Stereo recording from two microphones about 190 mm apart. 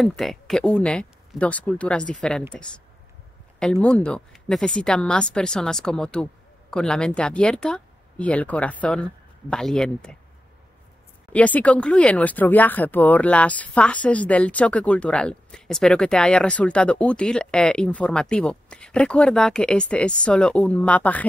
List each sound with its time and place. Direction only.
0.0 s speech: centre (ahead or behind)
3.8 s speech: 5° left (ahead or behind)
11.3 s speech: 10° left (ahead or behind)